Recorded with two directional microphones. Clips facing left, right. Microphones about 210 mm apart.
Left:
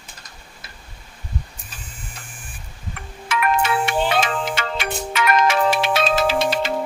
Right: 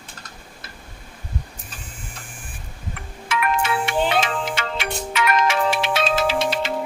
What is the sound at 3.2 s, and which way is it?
Music, 45° left (ahead or behind).